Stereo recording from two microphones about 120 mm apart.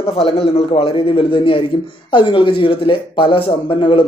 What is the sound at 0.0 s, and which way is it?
Speech, 55° left (ahead or behind).